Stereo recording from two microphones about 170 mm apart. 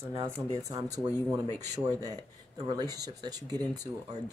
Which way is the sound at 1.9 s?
20° right (ahead or behind).